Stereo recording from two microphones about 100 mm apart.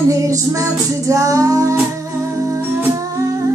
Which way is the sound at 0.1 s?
30° right (ahead or behind).